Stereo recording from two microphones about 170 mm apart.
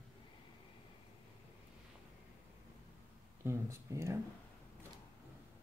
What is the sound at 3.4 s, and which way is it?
Speech, 15° right (ahead or behind).